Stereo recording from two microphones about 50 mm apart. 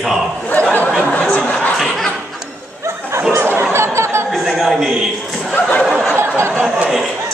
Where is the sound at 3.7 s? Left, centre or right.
Right.